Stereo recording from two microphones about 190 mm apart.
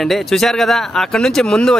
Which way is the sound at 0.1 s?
Centre (ahead or behind).